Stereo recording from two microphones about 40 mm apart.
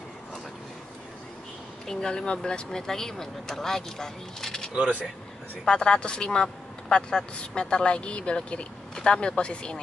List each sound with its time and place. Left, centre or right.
1.9 s speech: left
5.7 s speech: left